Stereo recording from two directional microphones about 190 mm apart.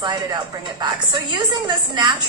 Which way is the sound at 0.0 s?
20° right (ahead or behind).